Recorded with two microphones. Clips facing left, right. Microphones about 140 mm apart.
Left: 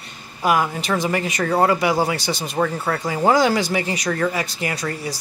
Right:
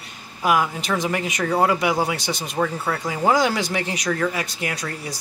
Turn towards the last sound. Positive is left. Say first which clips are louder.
# left 3 dB
turn(degrees=0)  # may be behind; listen again after turning